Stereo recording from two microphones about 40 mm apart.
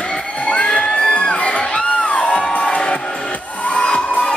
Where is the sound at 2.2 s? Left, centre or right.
Centre.